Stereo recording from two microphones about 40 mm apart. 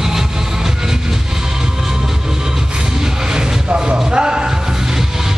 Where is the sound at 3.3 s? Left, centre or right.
Right.